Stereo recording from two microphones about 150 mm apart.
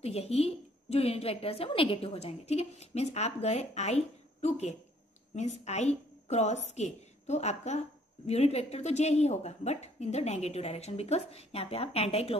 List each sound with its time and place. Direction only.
0.0 s a woman's voice: 45° left (ahead or behind)